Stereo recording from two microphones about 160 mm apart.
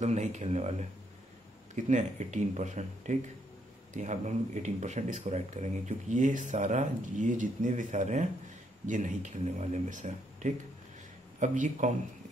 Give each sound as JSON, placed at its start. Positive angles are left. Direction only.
{"t": 0.0, "sound": "speech", "side_deg": -45}
{"t": 1.9, "sound": "speech", "side_deg": -50}